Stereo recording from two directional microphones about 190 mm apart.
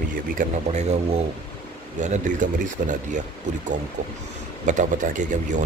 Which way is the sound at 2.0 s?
40° right (ahead or behind).